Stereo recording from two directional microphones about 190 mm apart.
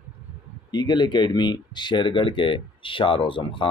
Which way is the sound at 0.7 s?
20° left (ahead or behind).